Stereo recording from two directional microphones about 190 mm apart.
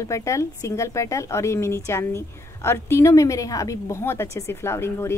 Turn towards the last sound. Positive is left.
turn(degrees=15)  # may be behind; listen again after turning